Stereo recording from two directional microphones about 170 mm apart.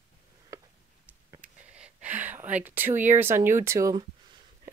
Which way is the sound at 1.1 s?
10° right (ahead or behind).